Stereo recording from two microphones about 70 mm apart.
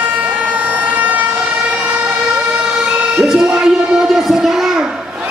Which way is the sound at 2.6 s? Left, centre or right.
Centre.